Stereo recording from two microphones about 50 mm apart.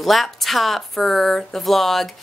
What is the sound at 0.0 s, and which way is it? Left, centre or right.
Speech, centre.